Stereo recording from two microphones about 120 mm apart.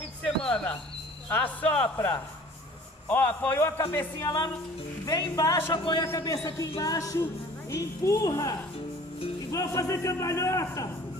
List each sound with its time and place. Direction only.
0.2 s a sound: 5° left (ahead or behind)
1.3 s a man's voice: 15° left (ahead or behind)
2.0 s a man's voice: 25° left (ahead or behind)
4.2 s a man's voice: 35° left (ahead or behind)